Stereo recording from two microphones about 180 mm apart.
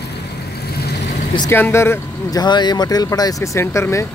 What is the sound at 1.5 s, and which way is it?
Speech, 15° left (ahead or behind).